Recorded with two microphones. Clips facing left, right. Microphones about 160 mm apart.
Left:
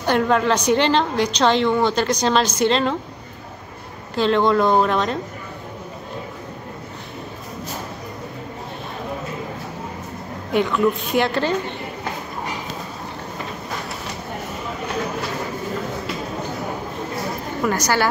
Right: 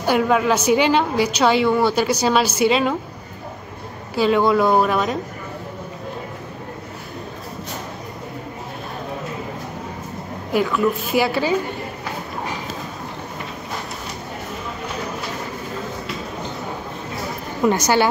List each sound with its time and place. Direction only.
0.0 s a woman's voice: 5° right (ahead or behind)
4.1 s a woman's voice: 10° right (ahead or behind)
10.5 s a woman's voice: centre (ahead or behind)
17.6 s speech: 20° right (ahead or behind)